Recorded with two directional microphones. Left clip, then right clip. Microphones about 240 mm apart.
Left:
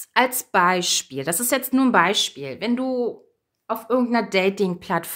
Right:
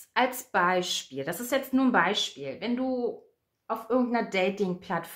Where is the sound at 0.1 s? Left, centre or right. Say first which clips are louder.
Left 7 dB; left.